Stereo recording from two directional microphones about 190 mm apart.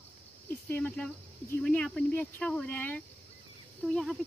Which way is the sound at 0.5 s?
10° left (ahead or behind).